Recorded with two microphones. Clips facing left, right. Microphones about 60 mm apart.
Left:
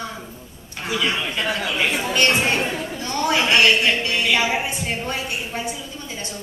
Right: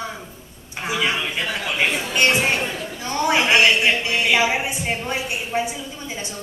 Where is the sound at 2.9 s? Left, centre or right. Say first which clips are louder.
Right 2 dB; centre.